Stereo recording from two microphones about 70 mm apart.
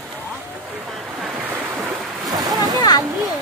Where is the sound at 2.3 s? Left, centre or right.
Right.